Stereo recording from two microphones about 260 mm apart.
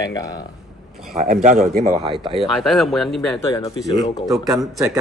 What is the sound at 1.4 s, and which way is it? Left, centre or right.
Speech, right.